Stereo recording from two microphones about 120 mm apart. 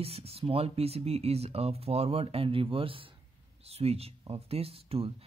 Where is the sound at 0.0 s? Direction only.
55° right (ahead or behind).